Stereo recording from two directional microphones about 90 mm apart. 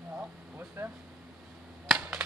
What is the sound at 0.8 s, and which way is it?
Air conditioning, 25° right (ahead or behind).